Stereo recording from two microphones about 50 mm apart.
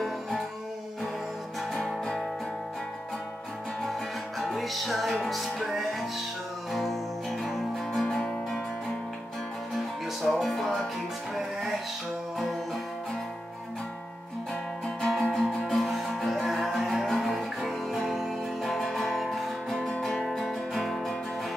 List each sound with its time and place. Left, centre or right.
1.7 s music: centre
4.4 s music: centre
8.1 s music: centre
9.8 s music: centre
15.0 s music: centre
19.9 s music: centre